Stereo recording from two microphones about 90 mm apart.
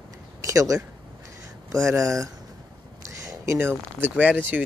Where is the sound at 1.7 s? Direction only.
35° right (ahead or behind); by 4.4 s 20° right (ahead or behind).